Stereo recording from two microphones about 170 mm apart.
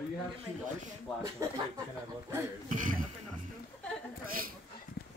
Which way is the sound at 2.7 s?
50° right (ahead or behind).